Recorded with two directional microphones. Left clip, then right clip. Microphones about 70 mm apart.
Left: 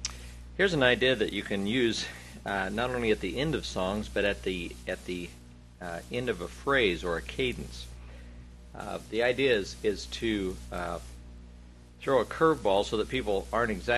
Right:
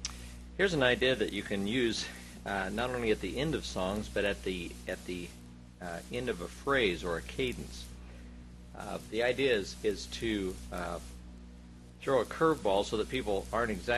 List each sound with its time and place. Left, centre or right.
0.6 s speech: right
12.0 s speech: right